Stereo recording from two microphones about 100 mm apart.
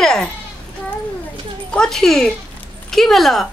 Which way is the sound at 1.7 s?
5° left (ahead or behind).